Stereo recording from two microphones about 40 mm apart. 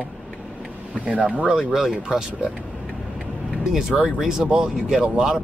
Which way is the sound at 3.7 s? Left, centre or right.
Centre.